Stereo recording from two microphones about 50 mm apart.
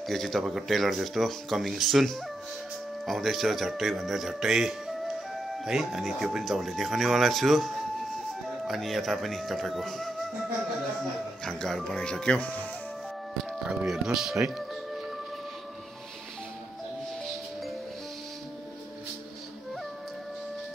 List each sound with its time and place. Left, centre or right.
0.1 s speech: centre
3.1 s speech: centre
11.4 s speech: centre
13.8 s speech: centre